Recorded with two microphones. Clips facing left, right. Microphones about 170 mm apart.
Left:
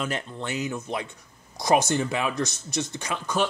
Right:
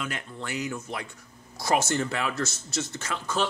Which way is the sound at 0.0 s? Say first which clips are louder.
Left 4 dB; 25° left (ahead or behind).